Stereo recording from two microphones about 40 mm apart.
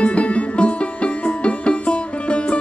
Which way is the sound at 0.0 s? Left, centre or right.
Left.